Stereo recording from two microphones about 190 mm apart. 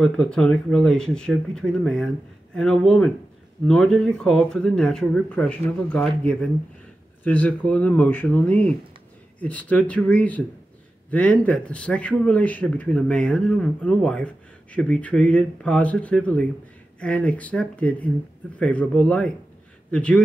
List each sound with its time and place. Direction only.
0.0 s a man's voice: 5° left (ahead or behind)